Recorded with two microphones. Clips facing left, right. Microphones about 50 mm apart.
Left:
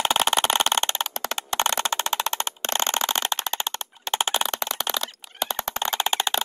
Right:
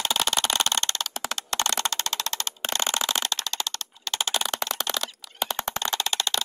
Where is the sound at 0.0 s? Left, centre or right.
Left.